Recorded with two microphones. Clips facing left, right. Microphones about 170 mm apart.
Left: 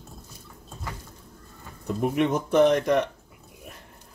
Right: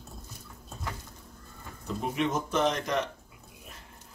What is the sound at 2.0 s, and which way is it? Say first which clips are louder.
Speech: left 6 dB; 60° left (ahead or behind).